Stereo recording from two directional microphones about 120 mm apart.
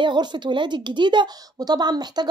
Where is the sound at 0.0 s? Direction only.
40° right (ahead or behind).